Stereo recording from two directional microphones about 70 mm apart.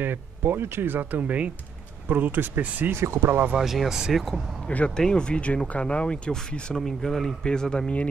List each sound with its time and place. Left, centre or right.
0.0 s speech: right
3.0 s speech: right
3.5 s speech: centre
4.6 s speech: centre